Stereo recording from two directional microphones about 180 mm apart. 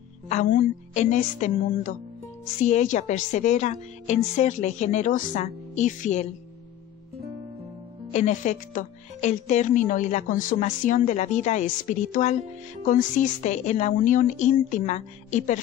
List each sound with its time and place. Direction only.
0.3 s a woman's voice: 45° left (ahead or behind)
8.1 s a woman's voice: 40° left (ahead or behind)